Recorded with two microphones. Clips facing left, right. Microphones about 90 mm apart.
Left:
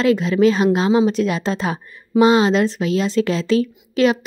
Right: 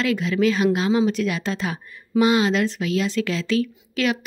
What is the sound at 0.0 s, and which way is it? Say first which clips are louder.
A woman's voice: left 6 dB; 30° left (ahead or behind).